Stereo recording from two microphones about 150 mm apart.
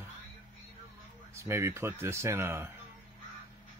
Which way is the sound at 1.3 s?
20° right (ahead or behind).